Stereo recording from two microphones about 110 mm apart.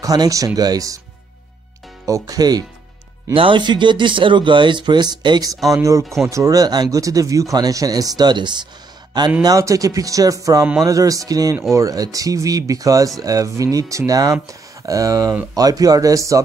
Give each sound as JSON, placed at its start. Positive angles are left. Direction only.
{"t": 0.0, "sound": "speech", "side_deg": -35}
{"t": 2.0, "sound": "speech", "side_deg": -30}
{"t": 3.3, "sound": "speech", "side_deg": -50}
{"t": 5.7, "sound": "speech", "side_deg": -30}
{"t": 6.0, "sound": "speech", "side_deg": 0}
{"t": 6.3, "sound": "speech", "side_deg": -30}
{"t": 9.4, "sound": "speech", "side_deg": -30}